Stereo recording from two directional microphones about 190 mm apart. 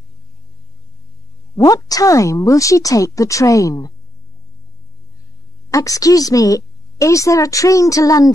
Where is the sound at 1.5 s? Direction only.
20° left (ahead or behind).